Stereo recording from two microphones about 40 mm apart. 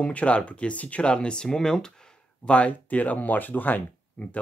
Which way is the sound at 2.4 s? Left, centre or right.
Left.